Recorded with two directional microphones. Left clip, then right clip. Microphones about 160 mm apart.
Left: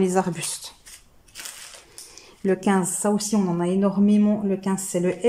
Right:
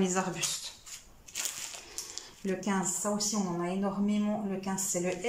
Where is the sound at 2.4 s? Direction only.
55° left (ahead or behind).